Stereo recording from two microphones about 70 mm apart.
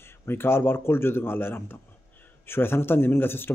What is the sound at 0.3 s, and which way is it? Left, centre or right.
Speech, left.